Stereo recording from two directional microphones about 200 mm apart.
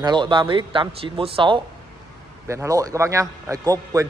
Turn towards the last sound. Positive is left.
turn(degrees=-15)  # may be behind; listen again after turning